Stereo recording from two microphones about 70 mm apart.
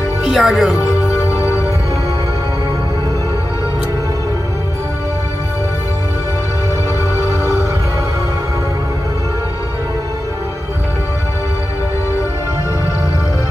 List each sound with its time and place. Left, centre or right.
0.3 s speech: centre
1.2 s music: left